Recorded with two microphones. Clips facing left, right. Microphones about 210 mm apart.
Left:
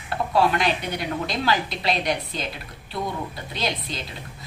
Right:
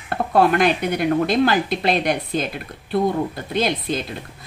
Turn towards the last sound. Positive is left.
turn(degrees=-50)  # may be behind; listen again after turning